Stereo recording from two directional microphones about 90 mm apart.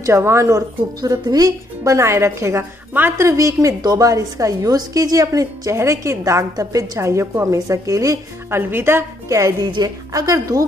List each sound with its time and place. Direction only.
0.0 s a woman's voice: 30° right (ahead or behind)
8.5 s a woman's voice: 25° right (ahead or behind)